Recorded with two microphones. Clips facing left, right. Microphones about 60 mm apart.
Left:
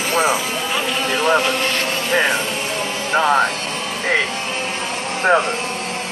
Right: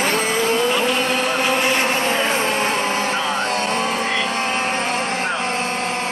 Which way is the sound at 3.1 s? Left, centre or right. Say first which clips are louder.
Left 6 dB; left.